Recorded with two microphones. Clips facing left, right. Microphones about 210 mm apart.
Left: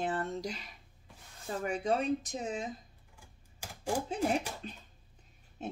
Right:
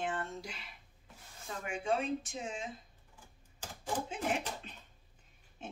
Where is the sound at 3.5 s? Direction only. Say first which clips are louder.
Left 4 dB; 10° left (ahead or behind).